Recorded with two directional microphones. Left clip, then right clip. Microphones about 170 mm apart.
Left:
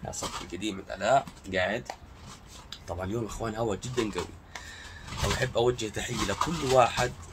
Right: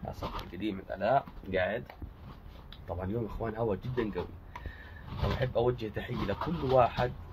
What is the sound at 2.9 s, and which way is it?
Speech, 15° left (ahead or behind).